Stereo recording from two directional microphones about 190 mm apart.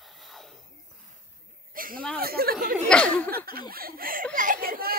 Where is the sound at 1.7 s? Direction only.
50° right (ahead or behind).